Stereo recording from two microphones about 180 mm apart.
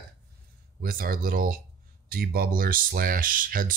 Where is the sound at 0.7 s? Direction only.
55° right (ahead or behind).